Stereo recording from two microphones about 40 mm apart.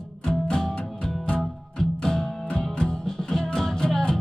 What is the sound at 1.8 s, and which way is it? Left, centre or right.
Music, centre.